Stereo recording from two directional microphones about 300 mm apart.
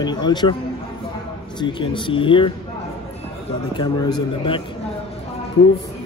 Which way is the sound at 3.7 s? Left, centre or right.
Centre.